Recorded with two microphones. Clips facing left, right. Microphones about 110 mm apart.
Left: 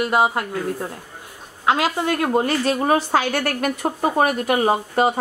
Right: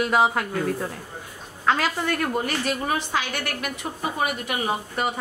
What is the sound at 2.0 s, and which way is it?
Speech, 25° left (ahead or behind).